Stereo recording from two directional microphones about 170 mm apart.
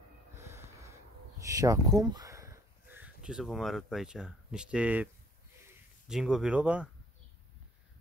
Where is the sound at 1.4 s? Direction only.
20° right (ahead or behind).